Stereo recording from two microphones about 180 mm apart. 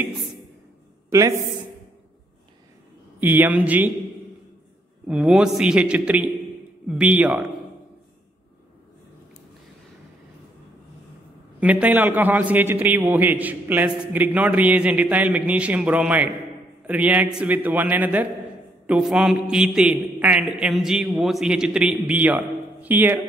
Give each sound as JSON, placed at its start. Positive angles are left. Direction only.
{"t": 3.2, "sound": "a man's voice", "side_deg": -10}
{"t": 5.0, "sound": "a man's voice", "side_deg": -5}
{"t": 11.6, "sound": "a man's voice", "side_deg": -10}